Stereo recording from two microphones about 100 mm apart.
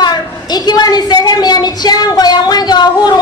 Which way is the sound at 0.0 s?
45° left (ahead or behind).